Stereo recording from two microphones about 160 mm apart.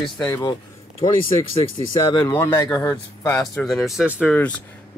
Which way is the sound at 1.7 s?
30° left (ahead or behind).